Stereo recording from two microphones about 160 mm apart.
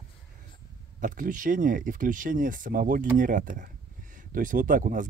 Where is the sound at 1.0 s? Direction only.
55° right (ahead or behind).